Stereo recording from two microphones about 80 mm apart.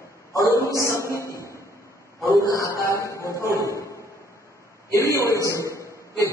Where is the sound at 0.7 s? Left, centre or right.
Left.